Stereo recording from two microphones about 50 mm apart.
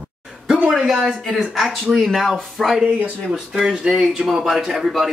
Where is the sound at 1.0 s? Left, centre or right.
Centre.